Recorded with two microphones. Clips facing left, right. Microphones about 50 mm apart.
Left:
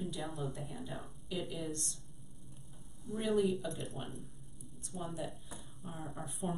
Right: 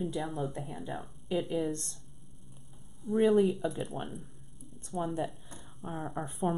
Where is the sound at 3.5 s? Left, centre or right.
Centre.